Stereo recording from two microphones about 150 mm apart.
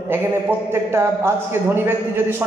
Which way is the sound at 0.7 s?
15° right (ahead or behind).